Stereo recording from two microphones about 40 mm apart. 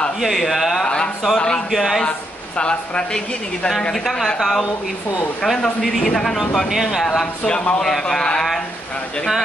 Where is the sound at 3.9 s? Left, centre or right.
Centre.